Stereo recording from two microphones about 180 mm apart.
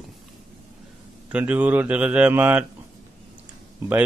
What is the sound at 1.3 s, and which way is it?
A man's voice, 10° right (ahead or behind).